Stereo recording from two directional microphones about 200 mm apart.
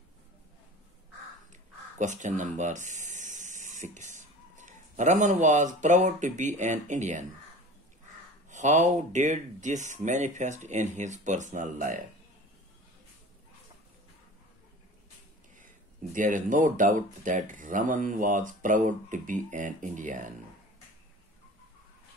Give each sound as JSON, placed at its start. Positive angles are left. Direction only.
{"t": 2.0, "sound": "speech", "side_deg": -40}
{"t": 8.5, "sound": "speech", "side_deg": -35}
{"t": 15.5, "sound": "speech", "side_deg": -40}